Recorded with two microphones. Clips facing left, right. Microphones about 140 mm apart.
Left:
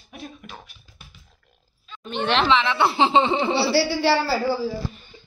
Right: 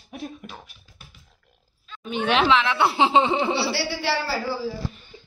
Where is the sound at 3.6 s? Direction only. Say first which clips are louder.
Left 6 dB; 35° left (ahead or behind).